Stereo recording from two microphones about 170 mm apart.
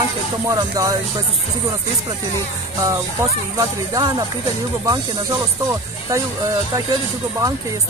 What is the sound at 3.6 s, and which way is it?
Speech, 25° right (ahead or behind).